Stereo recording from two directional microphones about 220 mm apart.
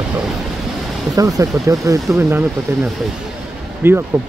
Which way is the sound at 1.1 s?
15° right (ahead or behind).